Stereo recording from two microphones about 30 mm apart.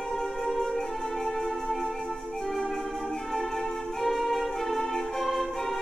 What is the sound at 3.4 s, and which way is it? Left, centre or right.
Music, centre.